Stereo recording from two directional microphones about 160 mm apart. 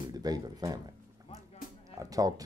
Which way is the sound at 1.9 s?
20° right (ahead or behind).